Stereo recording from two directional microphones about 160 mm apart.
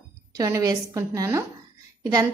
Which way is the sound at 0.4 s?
20° right (ahead or behind).